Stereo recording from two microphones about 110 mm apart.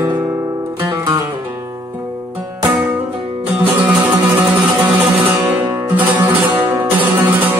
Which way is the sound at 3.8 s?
10° right (ahead or behind).